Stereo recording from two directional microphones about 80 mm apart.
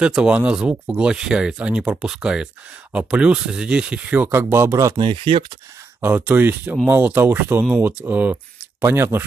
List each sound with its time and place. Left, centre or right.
0.0 s speech: centre
4.3 s speech: right
4.9 s speech: right
6.0 s speech: right